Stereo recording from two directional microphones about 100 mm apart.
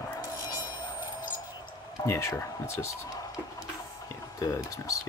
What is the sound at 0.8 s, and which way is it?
Wind chime, 15° right (ahead or behind).